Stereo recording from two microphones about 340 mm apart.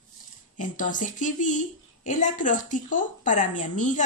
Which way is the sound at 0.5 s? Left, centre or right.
Left.